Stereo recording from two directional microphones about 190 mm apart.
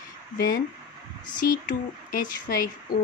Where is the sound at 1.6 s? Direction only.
45° left (ahead or behind).